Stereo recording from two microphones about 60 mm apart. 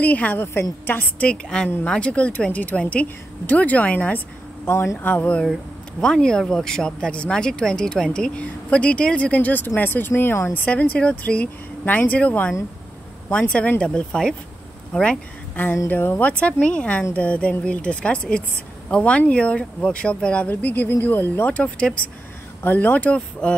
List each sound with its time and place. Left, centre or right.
0.0 s speech: left
0.4 s speech: left
1.3 s speech: centre
4.6 s speech: left
4.9 s speech: left
5.9 s speech: centre
11.8 s speech: left; by 15.1 s centre
15.5 s speech: left
20.4 s speech: left
21.5 s speech: left
22.6 s speech: left